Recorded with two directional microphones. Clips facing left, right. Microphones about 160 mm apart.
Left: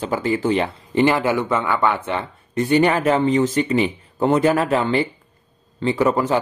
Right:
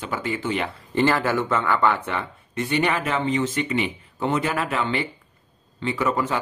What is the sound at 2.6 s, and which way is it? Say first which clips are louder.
Speech: left 6 dB; 40° left (ahead or behind).